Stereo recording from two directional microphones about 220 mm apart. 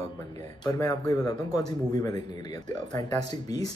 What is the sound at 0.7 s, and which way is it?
Speech, 15° left (ahead or behind).